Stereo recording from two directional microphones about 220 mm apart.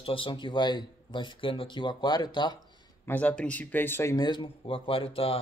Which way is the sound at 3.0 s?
5° left (ahead or behind).